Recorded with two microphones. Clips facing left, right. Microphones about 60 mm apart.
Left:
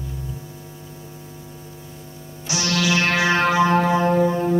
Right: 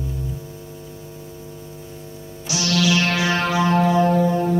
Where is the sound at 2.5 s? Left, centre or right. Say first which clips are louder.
Right 1 dB; left.